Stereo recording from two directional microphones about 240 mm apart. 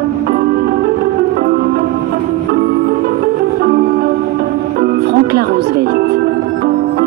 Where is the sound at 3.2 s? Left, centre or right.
Right.